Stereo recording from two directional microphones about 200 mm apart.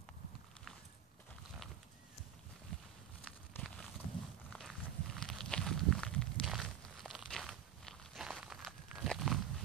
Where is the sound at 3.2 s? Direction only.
5° left (ahead or behind).